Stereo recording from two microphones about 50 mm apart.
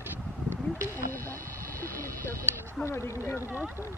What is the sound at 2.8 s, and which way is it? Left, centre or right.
Speech, left.